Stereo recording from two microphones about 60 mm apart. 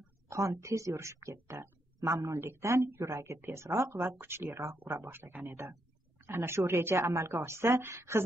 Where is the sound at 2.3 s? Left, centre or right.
Right.